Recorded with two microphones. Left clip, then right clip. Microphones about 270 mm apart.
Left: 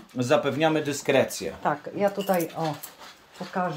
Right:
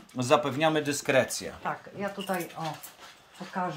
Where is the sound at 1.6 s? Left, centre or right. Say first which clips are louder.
Left 10 dB; left.